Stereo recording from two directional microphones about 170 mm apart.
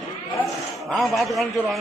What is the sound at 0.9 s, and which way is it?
Speech, centre (ahead or behind).